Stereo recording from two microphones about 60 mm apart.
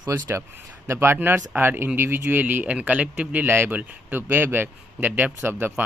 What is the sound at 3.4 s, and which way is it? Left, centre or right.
Speech, right.